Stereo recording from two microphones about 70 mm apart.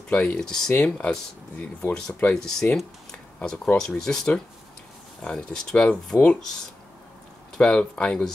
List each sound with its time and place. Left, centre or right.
0.1 s speech: left
0.4 s speech: centre
1.6 s speech: left
2.3 s speech: centre
7.5 s speech: centre